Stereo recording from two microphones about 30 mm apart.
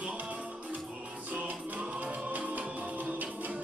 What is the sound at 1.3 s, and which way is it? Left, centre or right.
Music, right.